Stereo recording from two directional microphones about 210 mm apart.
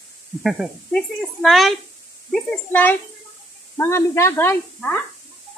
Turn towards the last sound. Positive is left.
turn(degrees=10)  # may be behind; listen again after turning